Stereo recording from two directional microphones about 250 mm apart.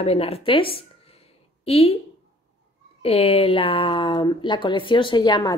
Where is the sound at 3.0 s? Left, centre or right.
Left.